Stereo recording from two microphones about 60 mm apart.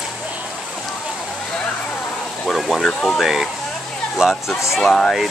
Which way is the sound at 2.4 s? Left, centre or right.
Centre.